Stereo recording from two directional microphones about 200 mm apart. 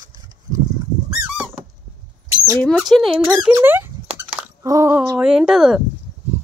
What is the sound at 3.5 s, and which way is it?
Speech, 10° right (ahead or behind).